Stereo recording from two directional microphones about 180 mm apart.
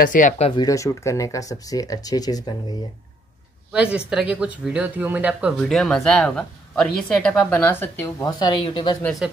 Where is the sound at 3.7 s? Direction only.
5° right (ahead or behind); by 9.0 s 25° left (ahead or behind).